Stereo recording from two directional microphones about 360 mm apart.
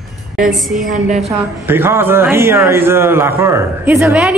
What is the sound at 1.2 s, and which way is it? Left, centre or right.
A man's voice, centre.